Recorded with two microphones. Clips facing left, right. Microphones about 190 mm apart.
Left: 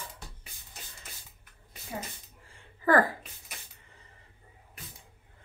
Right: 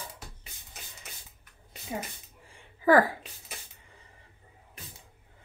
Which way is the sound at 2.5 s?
10° right (ahead or behind).